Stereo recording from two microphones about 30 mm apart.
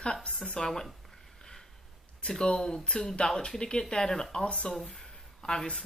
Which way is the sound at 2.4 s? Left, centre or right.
Left.